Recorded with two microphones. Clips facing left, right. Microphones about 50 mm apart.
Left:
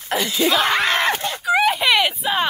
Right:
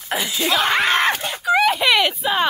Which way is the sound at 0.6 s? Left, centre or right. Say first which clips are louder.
Right 1 dB; right.